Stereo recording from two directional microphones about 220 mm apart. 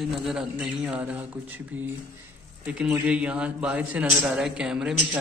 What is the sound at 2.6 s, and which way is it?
A man's voice, 5° right (ahead or behind).